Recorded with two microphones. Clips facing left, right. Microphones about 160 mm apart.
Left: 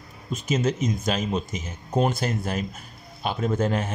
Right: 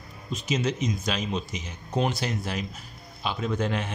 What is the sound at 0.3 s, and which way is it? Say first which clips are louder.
Speech: left 3 dB; 50° left (ahead or behind).